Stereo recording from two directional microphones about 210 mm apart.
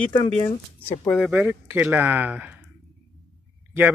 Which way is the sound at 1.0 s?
Centre (ahead or behind).